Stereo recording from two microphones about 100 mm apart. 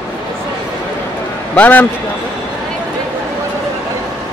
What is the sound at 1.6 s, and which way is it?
Speech, 15° left (ahead or behind).